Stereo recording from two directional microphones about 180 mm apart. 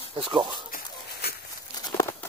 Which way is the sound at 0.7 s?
50° left (ahead or behind).